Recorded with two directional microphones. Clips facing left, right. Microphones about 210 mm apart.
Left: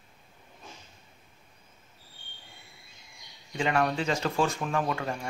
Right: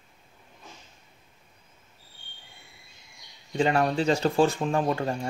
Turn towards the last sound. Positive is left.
turn(degrees=-35)  # may be behind; listen again after turning